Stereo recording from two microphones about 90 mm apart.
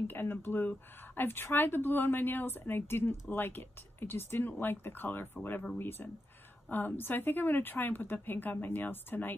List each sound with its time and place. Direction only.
0.0 s speech: 25° left (ahead or behind)